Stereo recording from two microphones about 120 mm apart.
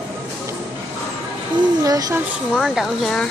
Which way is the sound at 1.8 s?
30° right (ahead or behind).